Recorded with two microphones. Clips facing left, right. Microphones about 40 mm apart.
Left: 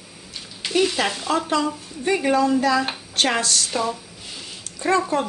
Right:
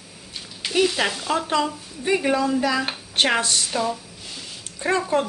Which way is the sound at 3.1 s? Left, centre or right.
Right.